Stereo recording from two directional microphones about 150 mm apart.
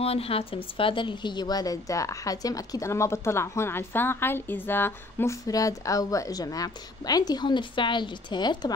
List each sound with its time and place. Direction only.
0.0 s a woman's voice: 40° left (ahead or behind)